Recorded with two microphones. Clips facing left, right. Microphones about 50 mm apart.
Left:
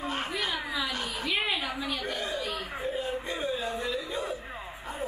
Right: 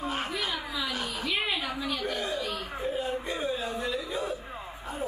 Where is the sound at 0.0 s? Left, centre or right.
Centre.